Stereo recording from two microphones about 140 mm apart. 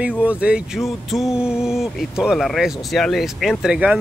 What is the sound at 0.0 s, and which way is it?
Speech, 10° right (ahead or behind).